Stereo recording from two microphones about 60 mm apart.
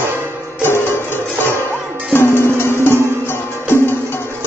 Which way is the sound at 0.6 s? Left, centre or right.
Left.